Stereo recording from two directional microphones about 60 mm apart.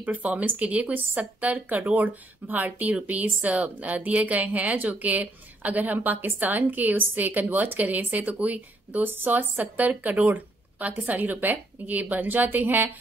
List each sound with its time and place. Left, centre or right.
0.0 s speech: right